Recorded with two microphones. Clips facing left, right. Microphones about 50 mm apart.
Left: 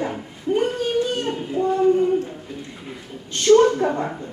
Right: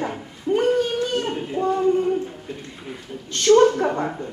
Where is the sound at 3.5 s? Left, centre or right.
Centre.